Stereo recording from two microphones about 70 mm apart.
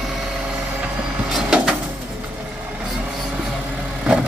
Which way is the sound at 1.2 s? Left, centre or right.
Centre.